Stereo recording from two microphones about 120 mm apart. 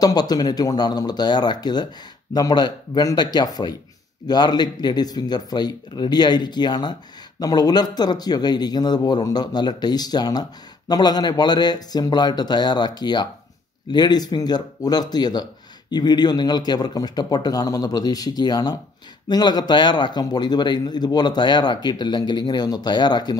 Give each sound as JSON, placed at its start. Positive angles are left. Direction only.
{"t": 0.0, "sound": "speech", "side_deg": 35}